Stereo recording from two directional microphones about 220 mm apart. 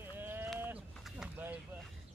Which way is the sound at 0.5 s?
10° right (ahead or behind).